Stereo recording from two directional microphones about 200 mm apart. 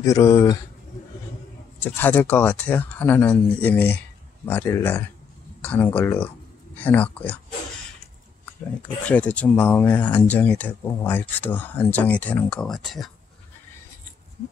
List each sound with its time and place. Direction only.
0.0 s speech: 15° left (ahead or behind)
1.8 s speech: 10° left (ahead or behind)
8.8 s speech: 5° left (ahead or behind)